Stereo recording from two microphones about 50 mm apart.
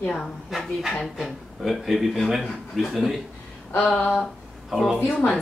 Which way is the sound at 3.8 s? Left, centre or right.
Left.